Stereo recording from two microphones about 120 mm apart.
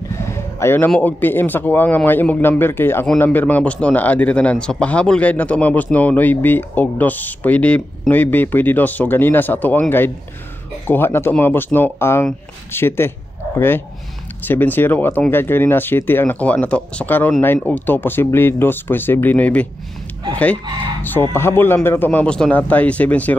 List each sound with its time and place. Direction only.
0.2 s speech: 25° left (ahead or behind)
21.0 s speech: 15° left (ahead or behind)